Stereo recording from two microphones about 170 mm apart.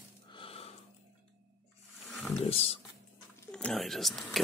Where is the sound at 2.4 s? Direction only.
35° left (ahead or behind).